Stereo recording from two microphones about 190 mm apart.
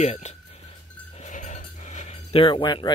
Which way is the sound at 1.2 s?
40° left (ahead or behind).